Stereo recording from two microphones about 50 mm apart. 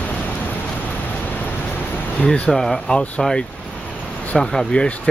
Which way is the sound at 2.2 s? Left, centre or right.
Left.